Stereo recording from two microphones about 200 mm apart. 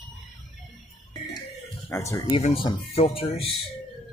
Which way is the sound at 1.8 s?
15° left (ahead or behind).